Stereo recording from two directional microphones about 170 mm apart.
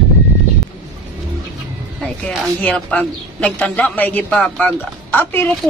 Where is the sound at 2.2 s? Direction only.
5° left (ahead or behind).